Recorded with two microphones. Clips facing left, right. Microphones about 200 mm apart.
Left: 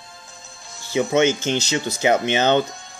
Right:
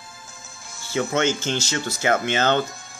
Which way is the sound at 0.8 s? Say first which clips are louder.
Left 4 dB; 15° left (ahead or behind).